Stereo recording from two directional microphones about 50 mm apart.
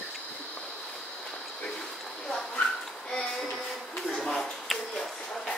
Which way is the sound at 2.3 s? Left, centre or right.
Centre.